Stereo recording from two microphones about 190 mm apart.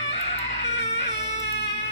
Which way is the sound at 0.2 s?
35° left (ahead or behind).